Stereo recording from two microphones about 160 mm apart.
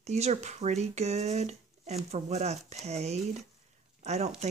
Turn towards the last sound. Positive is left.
turn(degrees=-45)  # may be behind; listen again after turning